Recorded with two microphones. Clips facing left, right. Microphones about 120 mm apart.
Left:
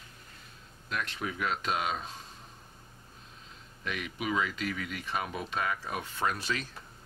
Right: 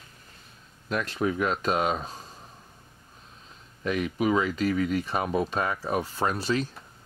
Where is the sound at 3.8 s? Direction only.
40° right (ahead or behind).